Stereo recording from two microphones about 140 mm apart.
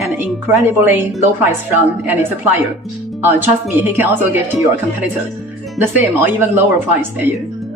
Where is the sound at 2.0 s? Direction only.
15° right (ahead or behind).